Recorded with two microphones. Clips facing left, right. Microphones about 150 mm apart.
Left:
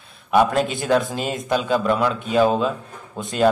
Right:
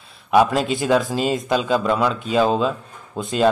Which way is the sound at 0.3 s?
5° right (ahead or behind).